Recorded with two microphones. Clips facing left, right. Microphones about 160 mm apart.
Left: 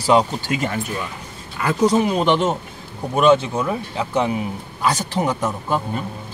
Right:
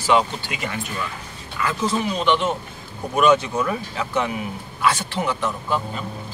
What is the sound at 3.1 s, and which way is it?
Speech, 30° left (ahead or behind).